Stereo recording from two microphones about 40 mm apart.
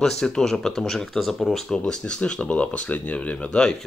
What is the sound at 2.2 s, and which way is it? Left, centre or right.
Speech, left.